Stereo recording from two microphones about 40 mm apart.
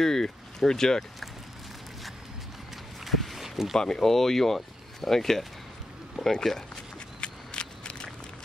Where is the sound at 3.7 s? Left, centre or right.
Centre.